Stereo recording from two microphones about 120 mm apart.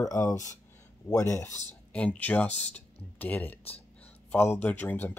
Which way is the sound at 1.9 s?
10° left (ahead or behind).